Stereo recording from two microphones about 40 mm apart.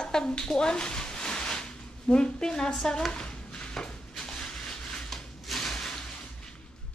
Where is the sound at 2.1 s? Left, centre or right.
Left.